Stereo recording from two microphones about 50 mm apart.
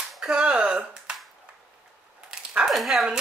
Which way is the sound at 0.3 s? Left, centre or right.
Centre.